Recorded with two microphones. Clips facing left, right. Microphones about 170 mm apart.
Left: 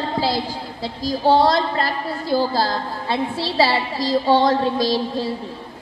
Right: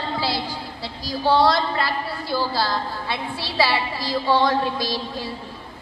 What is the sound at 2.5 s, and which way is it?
Speech, 45° left (ahead or behind).